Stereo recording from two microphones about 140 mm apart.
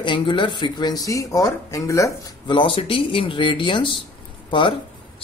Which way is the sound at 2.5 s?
40° left (ahead or behind).